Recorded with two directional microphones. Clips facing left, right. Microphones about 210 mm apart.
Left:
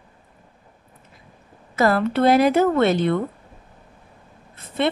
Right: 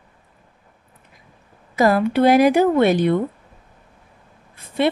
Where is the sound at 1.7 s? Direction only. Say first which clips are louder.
Right 2 dB; 15° right (ahead or behind).